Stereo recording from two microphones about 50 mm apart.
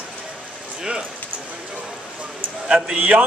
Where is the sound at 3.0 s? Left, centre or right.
Right.